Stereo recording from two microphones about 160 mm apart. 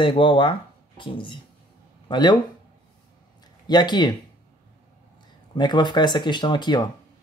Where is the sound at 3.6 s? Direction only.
25° left (ahead or behind).